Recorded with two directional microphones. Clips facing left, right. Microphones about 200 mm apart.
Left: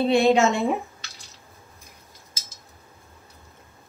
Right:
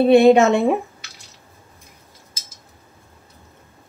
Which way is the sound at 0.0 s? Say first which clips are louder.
Right 7 dB; 60° right (ahead or behind).